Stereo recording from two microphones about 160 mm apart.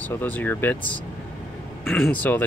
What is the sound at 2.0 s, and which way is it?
Speech, 10° left (ahead or behind).